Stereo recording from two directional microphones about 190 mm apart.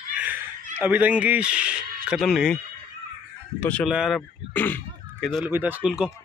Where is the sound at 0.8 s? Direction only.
10° right (ahead or behind).